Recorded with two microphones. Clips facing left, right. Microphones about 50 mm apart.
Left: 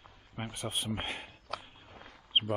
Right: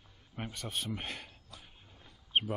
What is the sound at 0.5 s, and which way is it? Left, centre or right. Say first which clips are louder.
Speech: left 3 dB; left.